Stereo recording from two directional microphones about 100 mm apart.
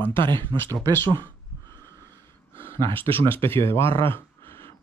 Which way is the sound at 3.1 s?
25° left (ahead or behind).